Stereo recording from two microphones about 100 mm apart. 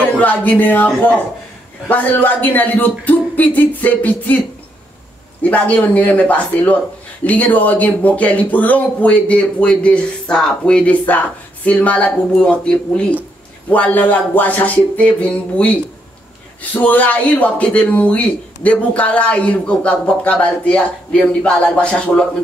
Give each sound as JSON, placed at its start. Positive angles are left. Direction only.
{"t": 0.2, "sound": "speech", "side_deg": 15}
{"t": 5.4, "sound": "speech", "side_deg": 15}